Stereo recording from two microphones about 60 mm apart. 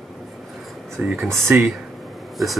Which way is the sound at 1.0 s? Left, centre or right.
Centre.